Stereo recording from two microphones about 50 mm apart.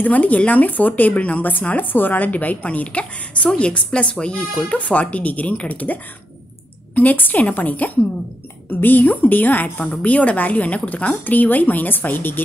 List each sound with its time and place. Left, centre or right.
0.0 s a woman's voice: left
7.0 s a woman's voice: left